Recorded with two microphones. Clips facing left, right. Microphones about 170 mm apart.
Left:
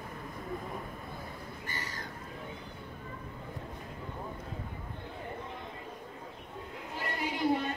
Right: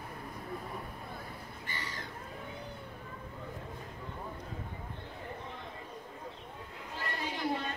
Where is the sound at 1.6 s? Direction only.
45° left (ahead or behind).